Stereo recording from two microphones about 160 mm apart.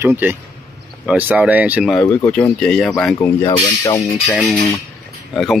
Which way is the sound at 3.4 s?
25° left (ahead or behind).